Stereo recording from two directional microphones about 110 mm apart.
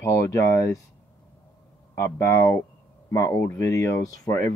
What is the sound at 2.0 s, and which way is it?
A man's voice, 25° left (ahead or behind).